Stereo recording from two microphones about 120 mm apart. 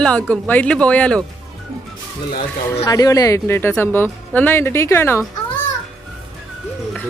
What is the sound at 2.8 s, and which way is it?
Speech, 30° left (ahead or behind).